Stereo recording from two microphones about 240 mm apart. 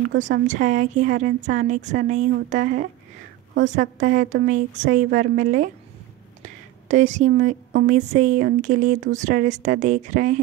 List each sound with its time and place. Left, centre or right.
0.5 s speech: right